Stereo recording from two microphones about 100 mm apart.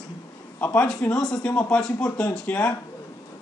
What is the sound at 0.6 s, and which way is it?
A man's voice, 15° left (ahead or behind).